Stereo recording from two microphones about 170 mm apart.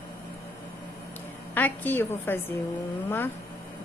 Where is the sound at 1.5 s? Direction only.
10° left (ahead or behind).